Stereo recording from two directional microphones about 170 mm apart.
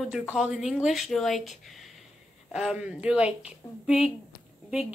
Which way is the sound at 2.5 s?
5° right (ahead or behind).